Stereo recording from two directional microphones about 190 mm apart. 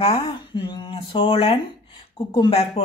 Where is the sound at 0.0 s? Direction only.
30° left (ahead or behind).